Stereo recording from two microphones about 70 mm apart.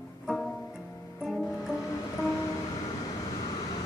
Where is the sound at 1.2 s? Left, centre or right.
Centre.